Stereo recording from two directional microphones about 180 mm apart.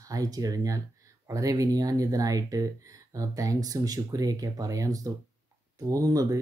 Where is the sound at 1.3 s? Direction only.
20° right (ahead or behind).